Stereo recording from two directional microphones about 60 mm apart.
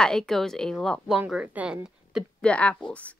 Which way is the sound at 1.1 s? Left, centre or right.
Centre.